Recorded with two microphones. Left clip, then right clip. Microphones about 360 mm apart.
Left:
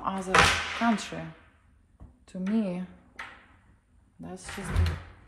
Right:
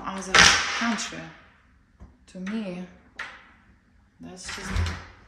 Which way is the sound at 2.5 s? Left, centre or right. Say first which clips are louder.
Left 3 dB; centre.